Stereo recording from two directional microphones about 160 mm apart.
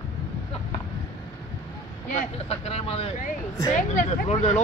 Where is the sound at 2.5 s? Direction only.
40° left (ahead or behind).